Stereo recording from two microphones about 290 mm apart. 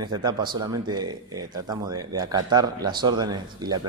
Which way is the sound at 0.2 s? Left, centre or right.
Centre.